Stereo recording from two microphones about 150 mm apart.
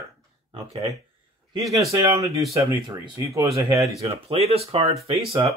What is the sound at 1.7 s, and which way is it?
Speech, 20° right (ahead or behind).